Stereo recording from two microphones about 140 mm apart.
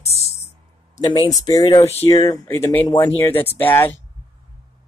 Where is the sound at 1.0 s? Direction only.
35° left (ahead or behind); by 3.9 s 15° left (ahead or behind).